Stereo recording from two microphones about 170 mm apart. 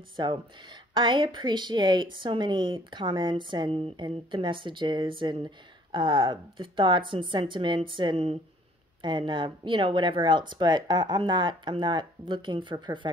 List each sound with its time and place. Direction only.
0.1 s a woman's voice: 30° right (ahead or behind)